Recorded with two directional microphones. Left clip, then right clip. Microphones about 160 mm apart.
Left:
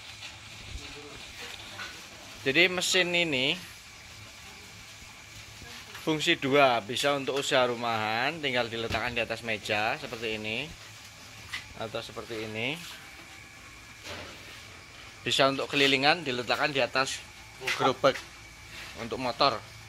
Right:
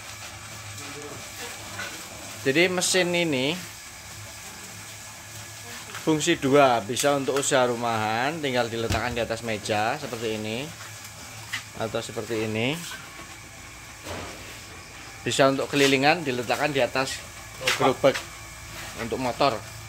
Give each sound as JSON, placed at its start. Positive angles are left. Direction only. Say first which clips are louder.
{"t": 2.4, "sound": "speech", "louder": "right 2 dB", "side_deg": 5}
{"t": 6.0, "sound": "speech", "louder": "right 4 dB", "side_deg": 0}
{"t": 11.8, "sound": "speech", "louder": "right 8 dB", "side_deg": -20}
{"t": 15.2, "sound": "speech", "louder": "right 4 dB", "side_deg": -5}